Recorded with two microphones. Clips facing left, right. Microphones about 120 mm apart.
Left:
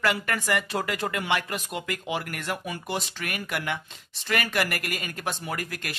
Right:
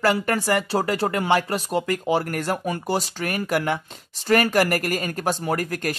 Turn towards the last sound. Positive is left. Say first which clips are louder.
# right 9 dB
turn(degrees=-40)  # may be behind; listen again after turning